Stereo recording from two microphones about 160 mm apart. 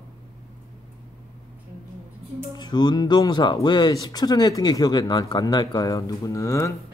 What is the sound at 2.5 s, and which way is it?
Speech, 25° left (ahead or behind).